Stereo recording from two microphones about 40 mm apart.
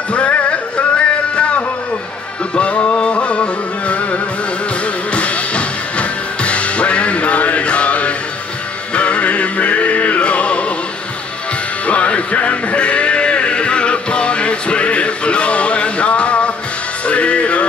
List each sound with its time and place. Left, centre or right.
0.1 s music: left
11.8 s music: left